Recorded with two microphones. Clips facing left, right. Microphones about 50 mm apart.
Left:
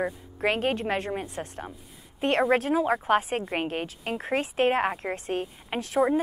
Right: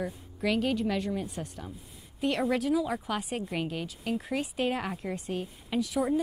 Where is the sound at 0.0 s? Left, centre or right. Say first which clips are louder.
Left 5 dB; left.